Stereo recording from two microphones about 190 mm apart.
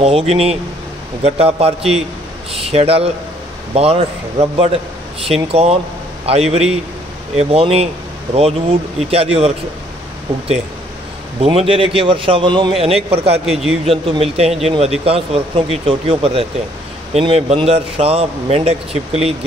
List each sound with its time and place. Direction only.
0.0 s a man's voice: 35° right (ahead or behind)
9.1 s a man's voice: 30° right (ahead or behind)
11.4 s a man's voice: 30° right (ahead or behind)
13.5 s a man's voice: centre (ahead or behind)
13.8 s a man's voice: 30° right (ahead or behind)